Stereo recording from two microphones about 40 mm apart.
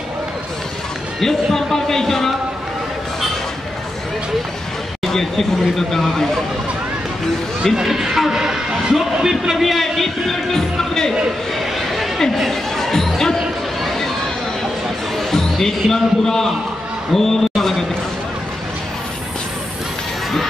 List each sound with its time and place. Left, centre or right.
1.2 s speech: centre
5.0 s speech: centre
7.7 s speech: centre
8.4 s speech: centre
11.5 s a sound: centre
12.2 s speech: centre
13.8 s a sound: centre
15.1 s a man's voice: centre
17.1 s a sound: centre